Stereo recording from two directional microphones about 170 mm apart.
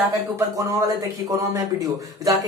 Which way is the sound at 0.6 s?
20° right (ahead or behind).